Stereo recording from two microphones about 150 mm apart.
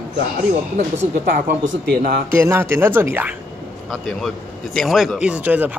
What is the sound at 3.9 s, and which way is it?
Speech, centre (ahead or behind).